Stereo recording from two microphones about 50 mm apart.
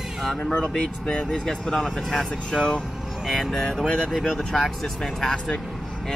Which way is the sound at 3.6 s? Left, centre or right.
Centre.